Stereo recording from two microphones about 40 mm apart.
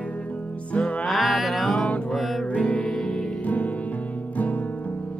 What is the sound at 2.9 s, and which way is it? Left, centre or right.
Music, centre.